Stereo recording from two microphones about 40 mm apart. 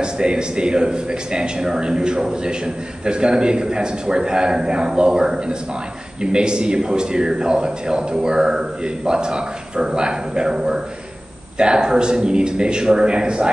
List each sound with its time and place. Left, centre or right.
0.0 s a man's voice: right